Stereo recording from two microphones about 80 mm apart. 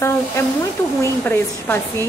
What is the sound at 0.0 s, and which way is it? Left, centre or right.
A woman's voice, left.